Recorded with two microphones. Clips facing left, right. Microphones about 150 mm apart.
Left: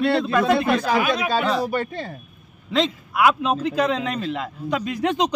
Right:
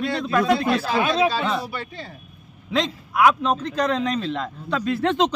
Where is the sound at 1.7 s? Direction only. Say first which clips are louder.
Left 8 dB; 50° left (ahead or behind).